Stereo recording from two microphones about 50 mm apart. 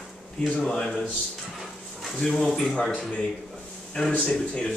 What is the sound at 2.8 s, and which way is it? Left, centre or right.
A man's voice, left.